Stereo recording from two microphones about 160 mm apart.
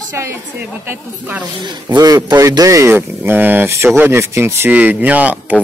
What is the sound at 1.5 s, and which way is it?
Speech, 30° right (ahead or behind).